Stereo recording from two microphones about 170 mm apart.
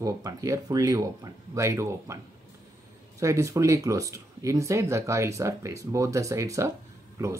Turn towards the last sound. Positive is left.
turn(degrees=-20)  # may be behind; listen again after turning